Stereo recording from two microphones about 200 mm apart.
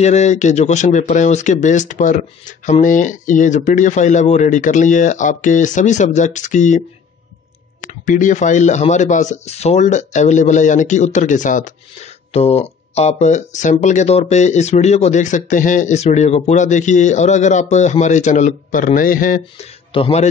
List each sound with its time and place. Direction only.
0.0 s speech: 35° left (ahead or behind)
8.0 s speech: 40° left (ahead or behind)
19.9 s a man's voice: 30° left (ahead or behind)